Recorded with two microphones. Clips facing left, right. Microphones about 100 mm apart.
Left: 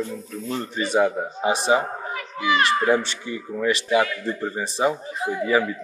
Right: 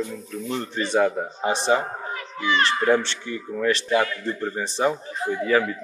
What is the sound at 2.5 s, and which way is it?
Speech, 30° right (ahead or behind).